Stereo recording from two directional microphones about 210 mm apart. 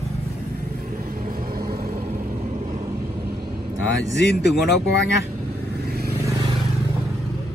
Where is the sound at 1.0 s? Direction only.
40° right (ahead or behind).